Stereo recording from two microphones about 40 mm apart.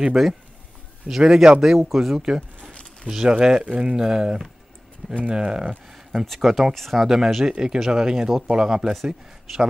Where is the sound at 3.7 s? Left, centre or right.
Right.